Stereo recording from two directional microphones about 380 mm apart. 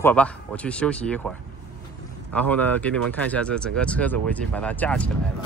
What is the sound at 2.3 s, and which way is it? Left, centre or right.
Speech, centre.